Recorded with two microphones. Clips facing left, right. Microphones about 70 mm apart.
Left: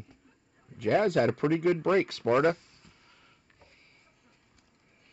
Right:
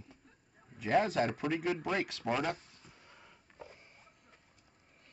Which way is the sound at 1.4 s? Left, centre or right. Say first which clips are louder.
Left 8 dB; left.